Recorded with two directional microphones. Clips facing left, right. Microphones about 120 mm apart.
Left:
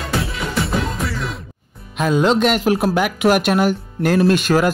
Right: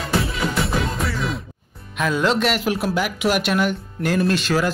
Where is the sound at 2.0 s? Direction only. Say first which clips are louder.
Left 4 dB; 35° left (ahead or behind).